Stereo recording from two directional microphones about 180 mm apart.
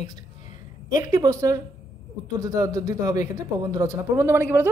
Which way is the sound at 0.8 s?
20° right (ahead or behind).